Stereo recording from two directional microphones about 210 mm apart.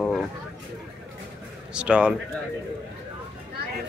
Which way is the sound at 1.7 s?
5° right (ahead or behind).